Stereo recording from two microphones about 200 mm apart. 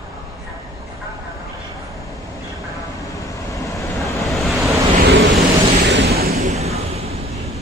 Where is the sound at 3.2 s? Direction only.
15° left (ahead or behind).